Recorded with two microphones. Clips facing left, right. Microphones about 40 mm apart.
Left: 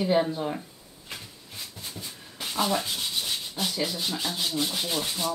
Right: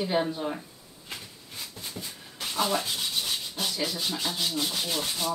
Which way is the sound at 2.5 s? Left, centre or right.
Centre.